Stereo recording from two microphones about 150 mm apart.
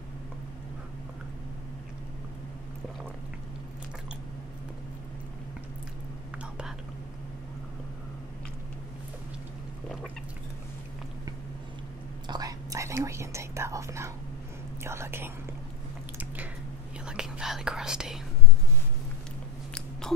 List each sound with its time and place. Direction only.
12.3 s whispering: 25° right (ahead or behind)
14.8 s speech: 15° right (ahead or behind)
17.0 s whispering: 5° right (ahead or behind)